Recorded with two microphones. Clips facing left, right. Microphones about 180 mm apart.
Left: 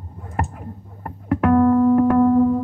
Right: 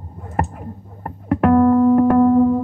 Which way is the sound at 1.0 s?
35° right (ahead or behind).